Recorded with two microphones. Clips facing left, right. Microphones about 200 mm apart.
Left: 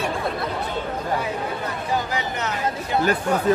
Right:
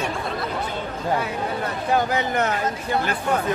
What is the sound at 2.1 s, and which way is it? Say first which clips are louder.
Speech: right 4 dB; 55° right (ahead or behind).